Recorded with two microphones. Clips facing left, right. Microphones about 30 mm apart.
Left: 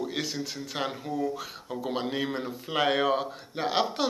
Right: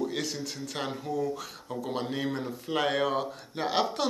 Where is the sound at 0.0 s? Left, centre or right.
Centre.